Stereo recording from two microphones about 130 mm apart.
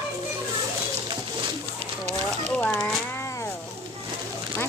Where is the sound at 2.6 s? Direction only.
10° left (ahead or behind).